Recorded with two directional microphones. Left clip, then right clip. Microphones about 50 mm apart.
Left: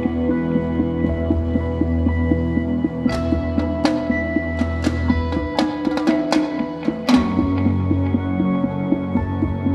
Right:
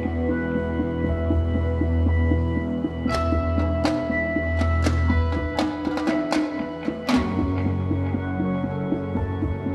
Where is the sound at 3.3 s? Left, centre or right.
Left.